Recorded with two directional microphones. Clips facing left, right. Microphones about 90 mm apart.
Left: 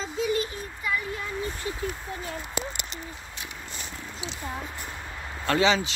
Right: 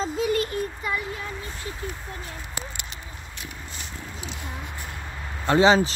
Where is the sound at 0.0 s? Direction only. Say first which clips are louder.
Right 3 dB; 55° right (ahead or behind).